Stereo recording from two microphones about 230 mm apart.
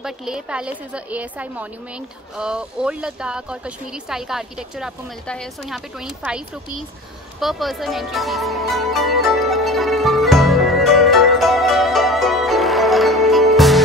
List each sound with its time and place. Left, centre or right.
0.0 s a woman's voice: centre
7.3 s music: centre